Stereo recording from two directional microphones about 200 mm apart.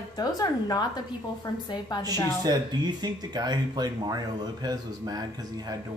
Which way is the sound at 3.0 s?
20° right (ahead or behind).